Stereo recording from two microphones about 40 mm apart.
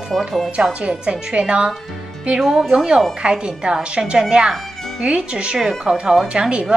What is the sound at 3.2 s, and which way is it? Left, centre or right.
A woman's voice, right.